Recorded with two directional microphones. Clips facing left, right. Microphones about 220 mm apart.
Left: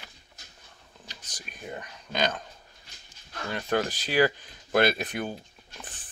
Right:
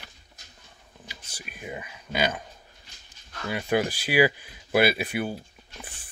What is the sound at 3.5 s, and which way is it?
Speech, 10° right (ahead or behind).